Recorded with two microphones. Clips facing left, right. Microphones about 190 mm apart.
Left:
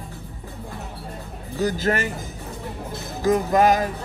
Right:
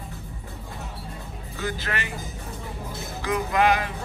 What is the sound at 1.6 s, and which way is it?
Speech, 40° left (ahead or behind).